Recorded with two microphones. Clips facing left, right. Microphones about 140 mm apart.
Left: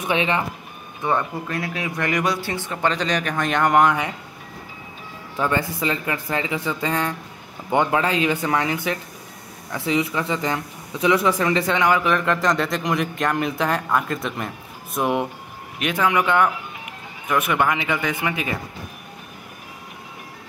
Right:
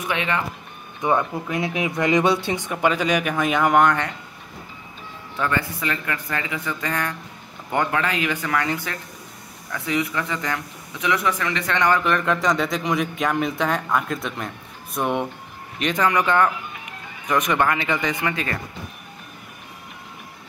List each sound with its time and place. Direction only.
0.1 s speech: 20° left (ahead or behind)
1.0 s speech: 15° right (ahead or behind); by 4.1 s 5° left (ahead or behind)
5.4 s speech: 25° left (ahead or behind)
9.7 s speech: 25° left (ahead or behind)
11.7 s a man's voice: 5° left (ahead or behind)